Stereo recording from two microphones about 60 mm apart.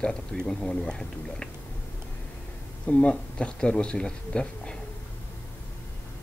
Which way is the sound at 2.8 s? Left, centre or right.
Left.